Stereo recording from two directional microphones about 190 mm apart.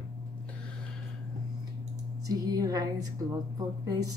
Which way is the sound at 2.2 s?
20° right (ahead or behind).